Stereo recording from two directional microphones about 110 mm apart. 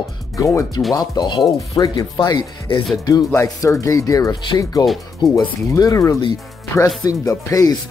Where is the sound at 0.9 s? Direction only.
40° left (ahead or behind).